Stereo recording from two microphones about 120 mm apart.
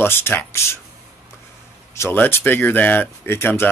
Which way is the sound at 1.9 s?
20° left (ahead or behind).